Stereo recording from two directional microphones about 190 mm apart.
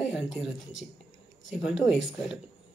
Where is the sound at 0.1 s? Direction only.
Centre (ahead or behind).